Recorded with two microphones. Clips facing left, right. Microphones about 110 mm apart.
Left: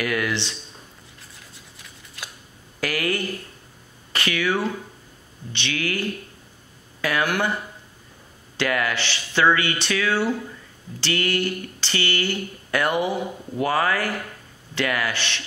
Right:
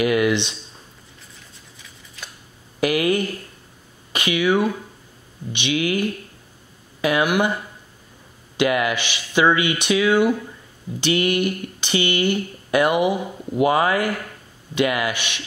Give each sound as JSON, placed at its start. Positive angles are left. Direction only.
{"t": 0.0, "sound": "speech", "side_deg": -20}
{"t": 1.8, "sound": "scissors", "side_deg": 5}
{"t": 2.8, "sound": "speech", "side_deg": -20}
{"t": 8.5, "sound": "speech", "side_deg": -15}